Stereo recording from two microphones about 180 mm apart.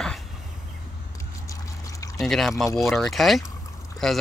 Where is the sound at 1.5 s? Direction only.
20° left (ahead or behind).